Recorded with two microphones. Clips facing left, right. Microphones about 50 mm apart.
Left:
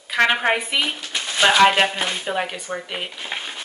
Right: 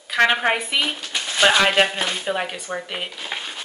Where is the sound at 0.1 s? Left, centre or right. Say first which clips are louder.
Even; centre.